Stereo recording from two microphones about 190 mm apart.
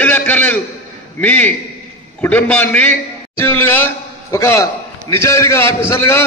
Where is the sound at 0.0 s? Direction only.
10° left (ahead or behind).